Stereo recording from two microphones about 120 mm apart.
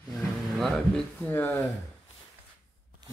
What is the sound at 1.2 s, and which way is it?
Speech, 15° left (ahead or behind).